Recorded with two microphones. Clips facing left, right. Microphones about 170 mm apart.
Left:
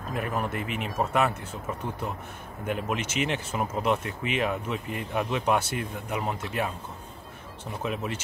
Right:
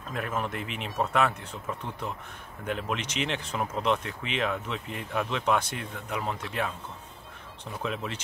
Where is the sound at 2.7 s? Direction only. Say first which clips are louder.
Left 2 dB; 5° left (ahead or behind).